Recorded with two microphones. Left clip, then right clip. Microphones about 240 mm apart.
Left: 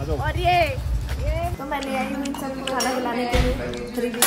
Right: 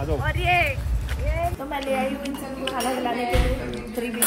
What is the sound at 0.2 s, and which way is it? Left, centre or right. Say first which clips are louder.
Speech: left 2 dB; left.